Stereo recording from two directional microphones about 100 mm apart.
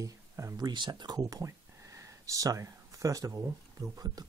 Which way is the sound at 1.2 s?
30° right (ahead or behind).